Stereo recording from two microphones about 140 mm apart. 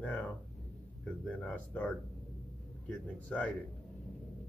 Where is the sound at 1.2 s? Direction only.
10° left (ahead or behind).